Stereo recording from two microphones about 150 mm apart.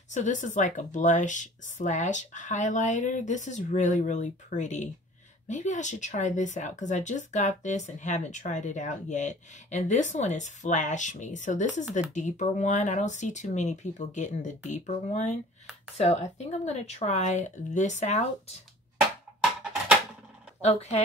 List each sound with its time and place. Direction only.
0.1 s speech: 55° left (ahead or behind)